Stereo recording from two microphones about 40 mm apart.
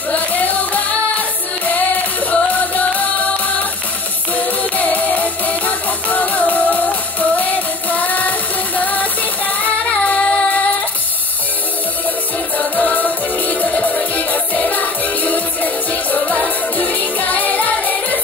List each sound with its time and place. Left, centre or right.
0.1 s music: left
4.4 s music: left
9.6 s singing: left
12.5 s music: left